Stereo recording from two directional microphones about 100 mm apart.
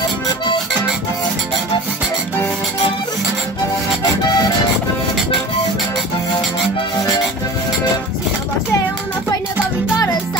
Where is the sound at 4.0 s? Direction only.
40° left (ahead or behind).